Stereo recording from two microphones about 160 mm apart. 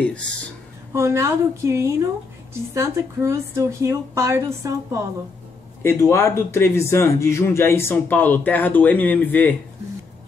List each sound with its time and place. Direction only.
0.9 s speech: 15° right (ahead or behind)
5.8 s speech: 15° left (ahead or behind)